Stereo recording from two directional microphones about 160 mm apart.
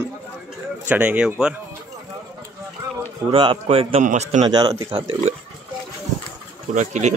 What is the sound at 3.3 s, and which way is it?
A man's voice, 35° right (ahead or behind).